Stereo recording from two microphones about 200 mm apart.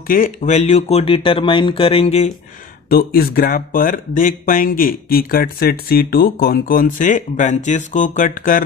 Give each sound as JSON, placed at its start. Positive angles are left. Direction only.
{"t": 0.0, "sound": "speech", "side_deg": 40}
{"t": 2.9, "sound": "speech", "side_deg": 45}